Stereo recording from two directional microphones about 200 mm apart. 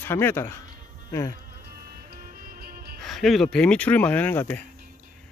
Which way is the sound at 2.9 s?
Centre (ahead or behind).